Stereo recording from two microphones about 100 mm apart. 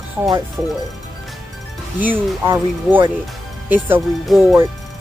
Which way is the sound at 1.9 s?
20° right (ahead or behind).